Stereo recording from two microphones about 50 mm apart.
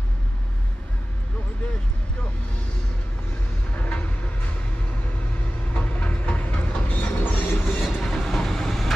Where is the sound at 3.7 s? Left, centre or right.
Left.